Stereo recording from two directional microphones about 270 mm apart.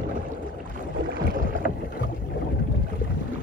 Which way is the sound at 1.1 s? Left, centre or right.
Right.